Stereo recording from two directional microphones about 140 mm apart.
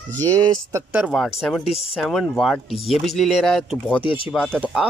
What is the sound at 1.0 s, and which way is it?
Speech, centre (ahead or behind).